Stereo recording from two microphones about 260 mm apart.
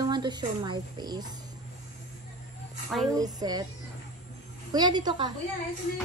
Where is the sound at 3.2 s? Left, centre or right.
Centre.